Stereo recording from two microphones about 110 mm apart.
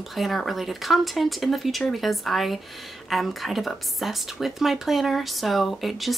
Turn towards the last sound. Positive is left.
turn(degrees=0)  # may be behind; listen again after turning